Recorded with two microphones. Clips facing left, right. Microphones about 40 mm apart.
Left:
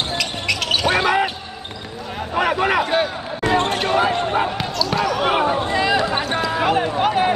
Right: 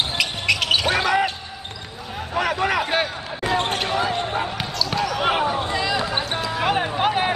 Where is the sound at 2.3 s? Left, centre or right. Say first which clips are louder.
Left 3 dB; centre.